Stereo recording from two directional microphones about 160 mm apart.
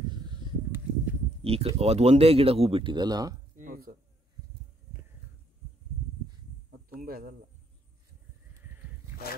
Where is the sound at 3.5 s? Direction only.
60° right (ahead or behind).